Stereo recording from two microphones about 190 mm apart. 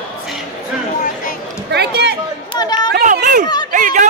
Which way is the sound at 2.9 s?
50° right (ahead or behind).